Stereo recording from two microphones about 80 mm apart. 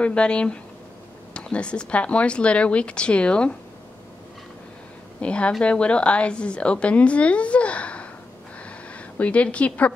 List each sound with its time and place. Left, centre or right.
0.0 s a woman's voice: centre
5.2 s a woman's voice: centre
8.6 s a sound: centre